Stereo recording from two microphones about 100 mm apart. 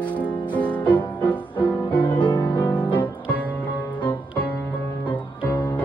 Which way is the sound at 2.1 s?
50° left (ahead or behind).